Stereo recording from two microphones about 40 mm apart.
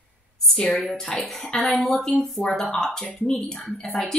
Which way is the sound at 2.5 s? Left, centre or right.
Centre.